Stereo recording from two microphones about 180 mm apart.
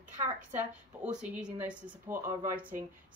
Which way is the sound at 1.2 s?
10° right (ahead or behind).